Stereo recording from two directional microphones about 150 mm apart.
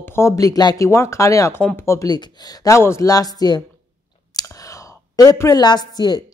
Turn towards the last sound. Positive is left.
turn(degrees=25)  # may be behind; listen again after turning